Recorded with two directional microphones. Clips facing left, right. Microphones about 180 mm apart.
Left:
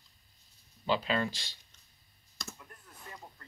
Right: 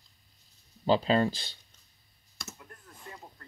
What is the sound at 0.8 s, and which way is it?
Speech, 35° right (ahead or behind).